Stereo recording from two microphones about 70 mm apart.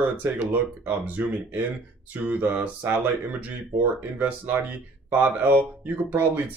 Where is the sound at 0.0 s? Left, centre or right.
Right.